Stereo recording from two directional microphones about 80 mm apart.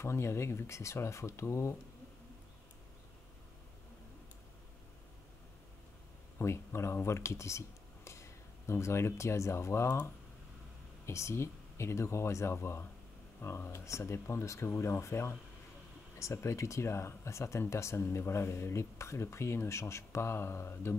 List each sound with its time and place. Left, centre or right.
0.0 s speech: left
6.3 s speech: left